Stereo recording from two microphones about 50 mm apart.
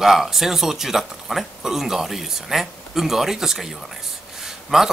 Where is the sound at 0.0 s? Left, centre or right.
Centre.